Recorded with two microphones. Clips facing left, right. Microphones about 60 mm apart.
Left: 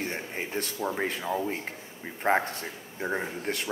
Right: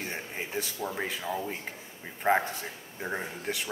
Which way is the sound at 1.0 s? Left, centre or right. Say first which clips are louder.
Left 3 dB; centre.